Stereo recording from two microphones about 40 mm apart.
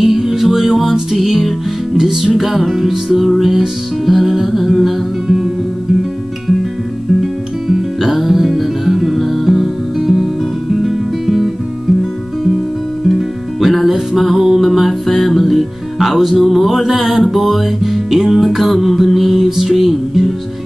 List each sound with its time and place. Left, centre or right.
0.0 s music: centre
2.0 s music: centre
2.3 s music: centre
7.2 s music: centre
10.0 s guitar: centre
13.1 s music: centre